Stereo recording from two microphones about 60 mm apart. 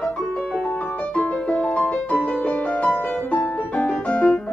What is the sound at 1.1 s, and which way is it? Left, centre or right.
Music, centre.